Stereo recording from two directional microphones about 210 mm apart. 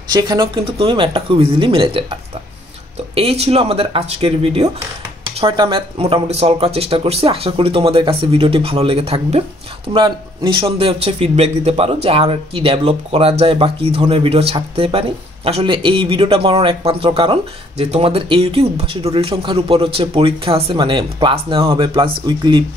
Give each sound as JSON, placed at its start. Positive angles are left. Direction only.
{"t": 0.1, "sound": "a man's voice", "side_deg": -20}
{"t": 3.2, "sound": "a man's voice", "side_deg": -30}